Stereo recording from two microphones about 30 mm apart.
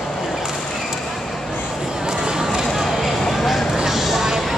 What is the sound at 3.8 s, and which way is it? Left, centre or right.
Music, centre.